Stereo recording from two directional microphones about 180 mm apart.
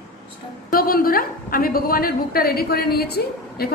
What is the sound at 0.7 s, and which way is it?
A woman's voice, 55° left (ahead or behind).